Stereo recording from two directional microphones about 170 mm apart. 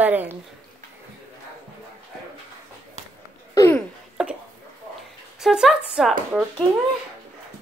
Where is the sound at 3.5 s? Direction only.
20° left (ahead or behind).